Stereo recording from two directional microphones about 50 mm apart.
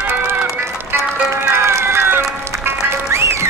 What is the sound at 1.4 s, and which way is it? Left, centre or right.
Crowd, right.